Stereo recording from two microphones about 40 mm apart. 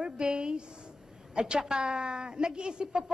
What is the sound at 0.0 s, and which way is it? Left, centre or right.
A woman's voice, right.